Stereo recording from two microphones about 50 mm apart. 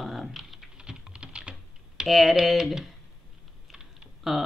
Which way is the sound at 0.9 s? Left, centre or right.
Centre.